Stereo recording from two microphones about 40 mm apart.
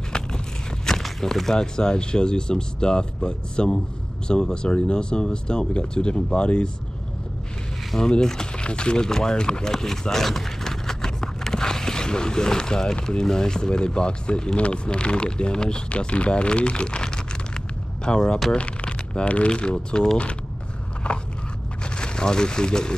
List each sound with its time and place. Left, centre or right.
0.1 s a sound: centre
1.0 s speech: centre; by 6.7 s left
8.0 s speech: centre
18.6 s a sound: left
19.2 s speech: left
21.0 s biting: left
21.8 s speech: left